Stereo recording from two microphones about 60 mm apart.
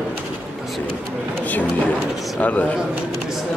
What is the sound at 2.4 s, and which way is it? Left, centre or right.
Speech, left.